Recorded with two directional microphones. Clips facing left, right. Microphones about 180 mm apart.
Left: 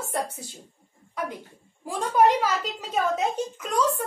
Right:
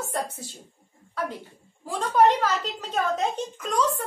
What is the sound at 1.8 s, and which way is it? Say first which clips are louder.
A woman's voice: even; 10° left (ahead or behind).